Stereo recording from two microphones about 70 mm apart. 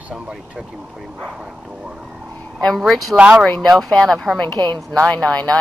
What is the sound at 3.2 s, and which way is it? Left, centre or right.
Speech, centre.